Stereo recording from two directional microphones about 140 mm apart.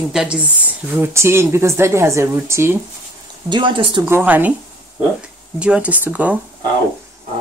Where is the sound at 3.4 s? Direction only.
35° right (ahead or behind).